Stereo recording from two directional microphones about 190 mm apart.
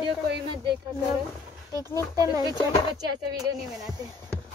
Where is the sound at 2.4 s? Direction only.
20° left (ahead or behind).